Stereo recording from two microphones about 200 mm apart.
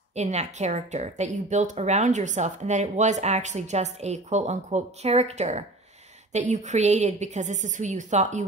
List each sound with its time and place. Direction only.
0.1 s speech: 35° right (ahead or behind)